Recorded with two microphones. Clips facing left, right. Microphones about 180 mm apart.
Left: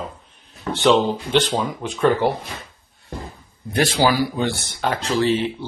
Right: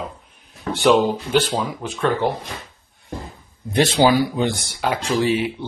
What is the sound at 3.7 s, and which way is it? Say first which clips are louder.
Speech: right 3 dB; 20° right (ahead or behind).